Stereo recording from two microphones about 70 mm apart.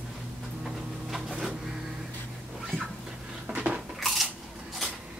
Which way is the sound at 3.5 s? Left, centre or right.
Centre.